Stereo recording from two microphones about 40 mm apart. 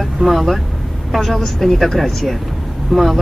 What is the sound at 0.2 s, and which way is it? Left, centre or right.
Speech, centre.